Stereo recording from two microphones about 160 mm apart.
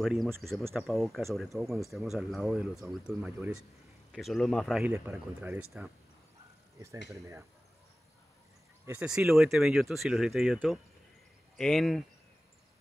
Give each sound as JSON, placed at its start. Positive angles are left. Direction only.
{"t": 0.0, "sound": "speech", "side_deg": 0}
{"t": 4.1, "sound": "speech", "side_deg": 0}
{"t": 4.8, "sound": "speech", "side_deg": -10}
{"t": 7.1, "sound": "speech", "side_deg": -15}
{"t": 8.8, "sound": "speech", "side_deg": -10}